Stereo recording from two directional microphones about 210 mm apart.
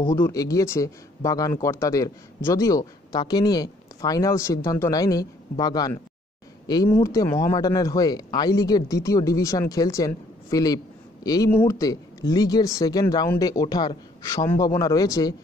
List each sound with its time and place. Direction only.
0.0 s speech: 15° left (ahead or behind)